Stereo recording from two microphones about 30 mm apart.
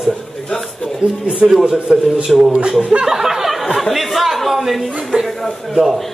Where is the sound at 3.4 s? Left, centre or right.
Centre.